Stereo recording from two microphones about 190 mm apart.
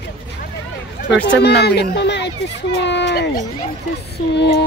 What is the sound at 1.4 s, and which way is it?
Speech, 60° left (ahead or behind).